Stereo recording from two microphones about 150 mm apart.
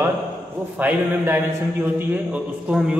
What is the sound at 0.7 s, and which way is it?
A man's voice, 10° right (ahead or behind).